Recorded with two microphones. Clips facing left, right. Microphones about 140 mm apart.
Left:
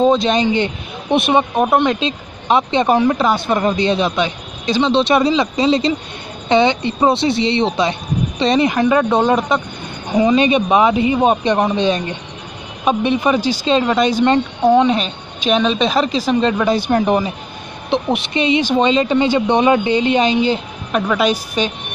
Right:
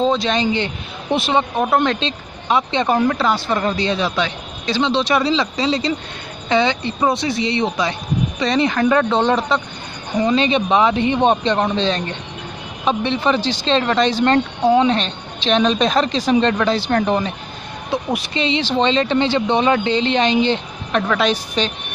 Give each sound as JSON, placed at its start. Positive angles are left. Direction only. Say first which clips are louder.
{"t": 0.0, "sound": "speech", "louder": "left 4 dB", "side_deg": 15}
{"t": 2.4, "sound": "speech", "louder": "left 3 dB", "side_deg": 20}